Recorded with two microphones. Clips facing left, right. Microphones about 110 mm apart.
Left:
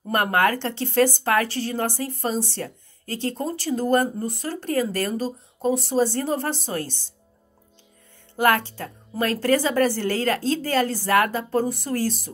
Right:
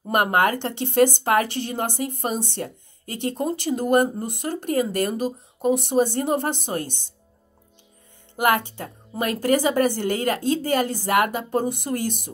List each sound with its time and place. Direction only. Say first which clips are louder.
0.1 s speech: right 1 dB; 15° right (ahead or behind)
8.4 s a woman's voice: left 1 dB; 15° right (ahead or behind)